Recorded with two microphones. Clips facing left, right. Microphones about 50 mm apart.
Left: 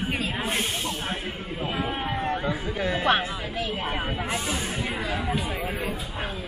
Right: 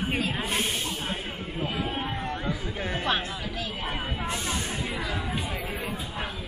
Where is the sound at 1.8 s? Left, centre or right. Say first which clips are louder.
Left 3 dB; centre.